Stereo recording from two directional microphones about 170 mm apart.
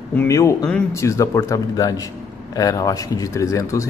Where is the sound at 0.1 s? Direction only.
15° left (ahead or behind).